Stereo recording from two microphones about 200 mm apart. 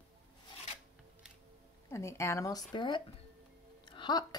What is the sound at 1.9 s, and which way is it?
A woman's voice, 15° left (ahead or behind).